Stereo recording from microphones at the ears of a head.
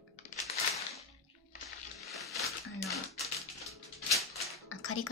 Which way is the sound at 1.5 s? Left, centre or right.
Left.